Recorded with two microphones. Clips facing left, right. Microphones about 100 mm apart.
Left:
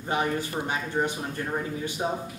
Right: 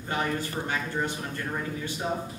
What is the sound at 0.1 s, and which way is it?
A man's voice, 20° left (ahead or behind).